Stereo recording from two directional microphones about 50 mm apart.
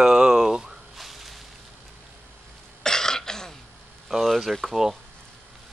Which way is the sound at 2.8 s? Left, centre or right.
Centre.